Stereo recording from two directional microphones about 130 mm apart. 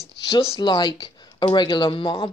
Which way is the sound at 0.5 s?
35° left (ahead or behind).